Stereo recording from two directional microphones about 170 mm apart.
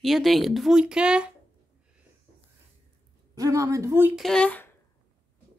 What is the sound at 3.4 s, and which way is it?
Speech, 20° right (ahead or behind).